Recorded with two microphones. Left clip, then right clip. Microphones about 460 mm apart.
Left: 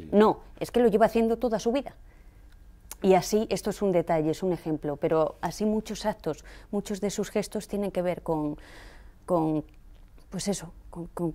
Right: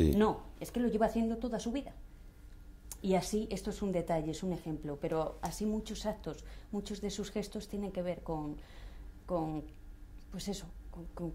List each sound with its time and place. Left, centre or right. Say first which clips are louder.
0.2 s a woman's voice: left 9 dB; left